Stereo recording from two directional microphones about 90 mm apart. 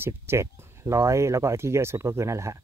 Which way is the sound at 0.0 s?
30° right (ahead or behind).